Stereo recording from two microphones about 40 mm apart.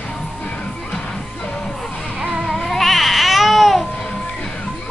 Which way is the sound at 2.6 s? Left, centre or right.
Centre.